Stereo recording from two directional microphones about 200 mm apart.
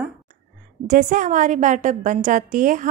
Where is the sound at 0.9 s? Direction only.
40° right (ahead or behind).